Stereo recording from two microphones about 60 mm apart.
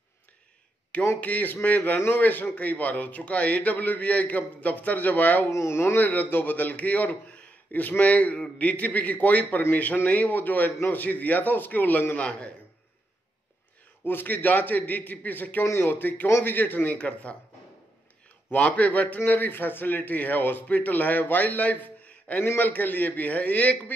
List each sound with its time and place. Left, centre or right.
1.0 s a man's voice: left
5.5 s speech: left
5.9 s a man's voice: left
12.2 s a man's voice: centre
14.0 s a man's voice: left
18.5 s a man's voice: left